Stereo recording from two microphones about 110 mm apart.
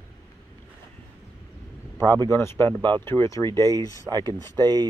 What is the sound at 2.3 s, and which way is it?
Speech, 20° left (ahead or behind).